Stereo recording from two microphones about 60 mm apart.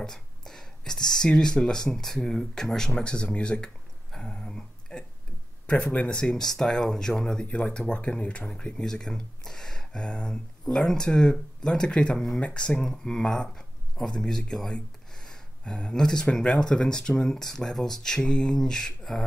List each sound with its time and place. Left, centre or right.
0.0 s speech: centre